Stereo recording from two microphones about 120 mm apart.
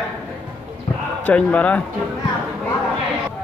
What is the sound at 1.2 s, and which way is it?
Speech, 15° left (ahead or behind).